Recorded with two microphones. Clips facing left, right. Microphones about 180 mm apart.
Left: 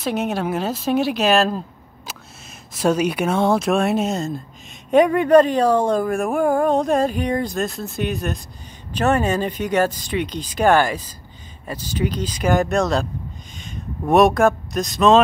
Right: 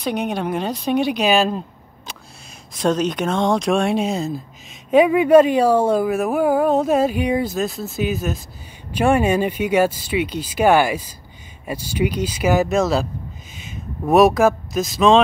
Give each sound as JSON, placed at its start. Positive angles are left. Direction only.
{"t": 0.0, "sound": "speech", "side_deg": 5}
{"t": 2.7, "sound": "speech", "side_deg": 5}